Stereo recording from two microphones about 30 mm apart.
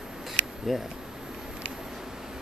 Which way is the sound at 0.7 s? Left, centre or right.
Centre.